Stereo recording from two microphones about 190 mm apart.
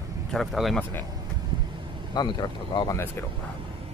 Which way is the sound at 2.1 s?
20° left (ahead or behind).